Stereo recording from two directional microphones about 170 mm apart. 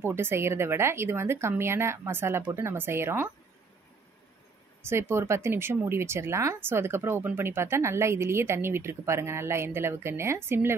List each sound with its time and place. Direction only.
0.0 s speech: 15° right (ahead or behind)
4.8 s speech: 15° right (ahead or behind)